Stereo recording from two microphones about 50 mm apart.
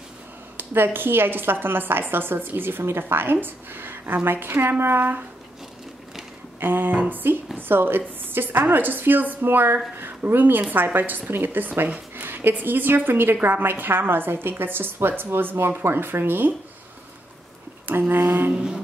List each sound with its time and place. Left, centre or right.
0.6 s a woman's voice: right
6.6 s a sound: right
7.5 s a woman's voice: right
10.2 s a sound: right
10.7 s a woman's voice: right
11.3 s a sound: right
12.2 s a woman's voice: right
17.8 s a woman's voice: right
18.5 s music: centre